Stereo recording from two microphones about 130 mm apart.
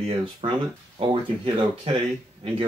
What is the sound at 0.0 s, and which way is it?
Speech, 40° right (ahead or behind).